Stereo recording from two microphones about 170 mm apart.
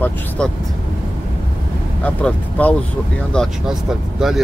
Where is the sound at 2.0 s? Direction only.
10° left (ahead or behind).